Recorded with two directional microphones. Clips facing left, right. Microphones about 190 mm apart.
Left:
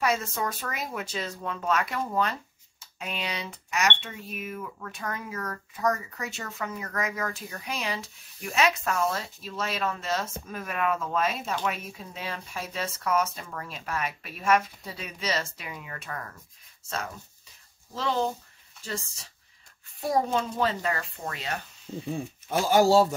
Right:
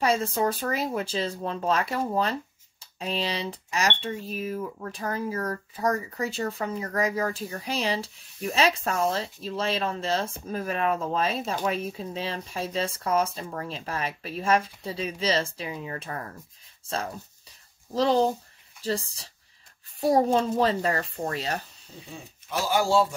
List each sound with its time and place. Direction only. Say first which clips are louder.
0.0 s speech: right 4 dB; 30° right (ahead or behind)
17.9 s speech: right 6 dB; 35° right (ahead or behind)
22.5 s speech: left 3 dB; 45° left (ahead or behind)